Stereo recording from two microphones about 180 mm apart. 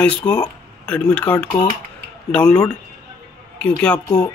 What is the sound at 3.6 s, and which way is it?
Speech, 5° left (ahead or behind).